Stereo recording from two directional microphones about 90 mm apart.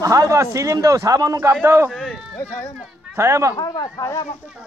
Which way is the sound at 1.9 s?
5° right (ahead or behind).